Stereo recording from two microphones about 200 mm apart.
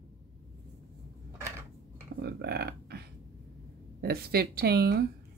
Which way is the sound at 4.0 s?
50° right (ahead or behind).